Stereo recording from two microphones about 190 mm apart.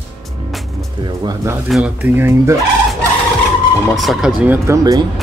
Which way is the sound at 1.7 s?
5° right (ahead or behind).